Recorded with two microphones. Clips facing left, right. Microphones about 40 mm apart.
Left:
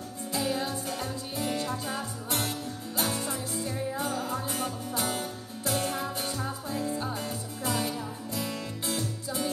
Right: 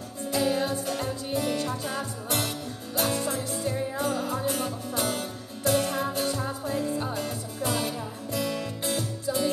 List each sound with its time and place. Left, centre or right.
0.3 s music: right